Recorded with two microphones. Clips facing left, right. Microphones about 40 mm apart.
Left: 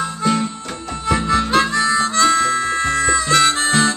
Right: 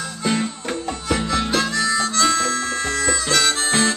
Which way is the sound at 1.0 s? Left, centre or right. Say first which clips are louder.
Left 5 dB; left.